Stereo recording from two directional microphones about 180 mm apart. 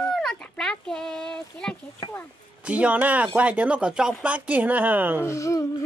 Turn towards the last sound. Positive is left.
turn(degrees=15)  # may be behind; listen again after turning